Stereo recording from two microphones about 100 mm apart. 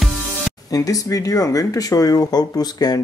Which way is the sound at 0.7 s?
35° left (ahead or behind).